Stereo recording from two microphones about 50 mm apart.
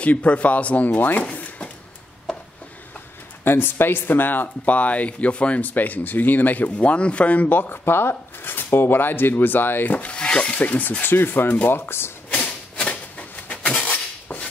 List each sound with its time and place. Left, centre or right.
0.0 s speech: left
3.4 s speech: left
6.8 s speech: left
7.4 s speech: left
9.9 s rub: left
11.4 s speech: left
11.7 s speech: left
12.3 s a sound: left